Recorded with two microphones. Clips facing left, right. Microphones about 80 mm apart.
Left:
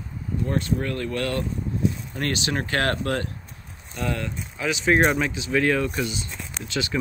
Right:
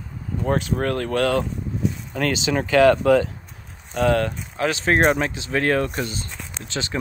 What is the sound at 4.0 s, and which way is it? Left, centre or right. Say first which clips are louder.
Speech: right 9 dB; right.